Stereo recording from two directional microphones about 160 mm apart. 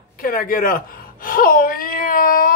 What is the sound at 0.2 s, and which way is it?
Gasp, 65° left (ahead or behind).